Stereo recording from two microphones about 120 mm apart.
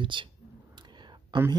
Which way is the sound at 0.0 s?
40° right (ahead or behind).